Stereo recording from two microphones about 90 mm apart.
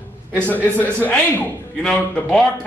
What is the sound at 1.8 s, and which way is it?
Speech, 5° left (ahead or behind).